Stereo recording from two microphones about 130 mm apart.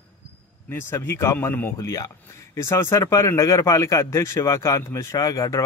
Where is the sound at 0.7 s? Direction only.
20° left (ahead or behind).